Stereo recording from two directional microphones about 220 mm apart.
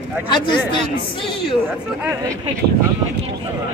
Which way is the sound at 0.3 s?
20° left (ahead or behind).